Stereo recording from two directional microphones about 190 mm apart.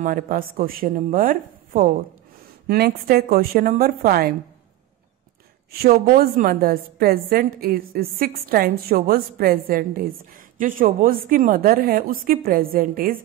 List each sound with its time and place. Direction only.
0.0 s a woman's voice: 45° right (ahead or behind)
5.7 s a woman's voice: 55° right (ahead or behind)